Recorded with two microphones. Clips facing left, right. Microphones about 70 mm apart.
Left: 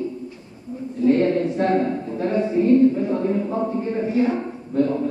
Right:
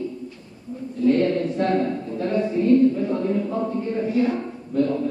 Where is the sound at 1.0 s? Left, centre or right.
Left.